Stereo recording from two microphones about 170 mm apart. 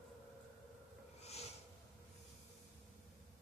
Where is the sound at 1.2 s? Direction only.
40° left (ahead or behind).